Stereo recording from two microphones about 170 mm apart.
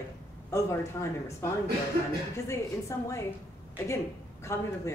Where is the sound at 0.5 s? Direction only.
15° left (ahead or behind).